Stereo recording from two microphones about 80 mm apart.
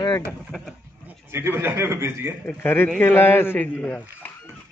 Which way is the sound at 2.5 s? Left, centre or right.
Left.